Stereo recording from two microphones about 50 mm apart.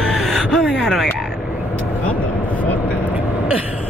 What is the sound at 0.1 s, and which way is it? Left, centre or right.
Gasp, centre.